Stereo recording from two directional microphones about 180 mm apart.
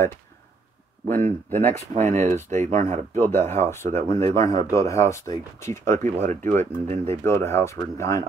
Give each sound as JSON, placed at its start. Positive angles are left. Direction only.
{"t": 1.0, "sound": "speech", "side_deg": -45}
{"t": 3.3, "sound": "speech", "side_deg": 15}
{"t": 6.5, "sound": "speech", "side_deg": -40}
{"t": 7.1, "sound": "speech", "side_deg": 15}